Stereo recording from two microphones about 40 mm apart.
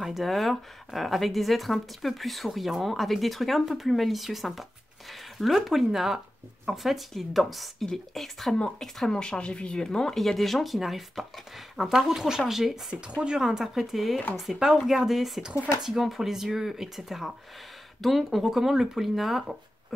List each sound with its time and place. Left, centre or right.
0.2 s speech: centre
5.7 s speech: centre
8.5 s speech: centre
9.4 s speech: left
9.8 s speech: centre
10.2 s speech: centre
13.2 s speech: centre
18.4 s speech: centre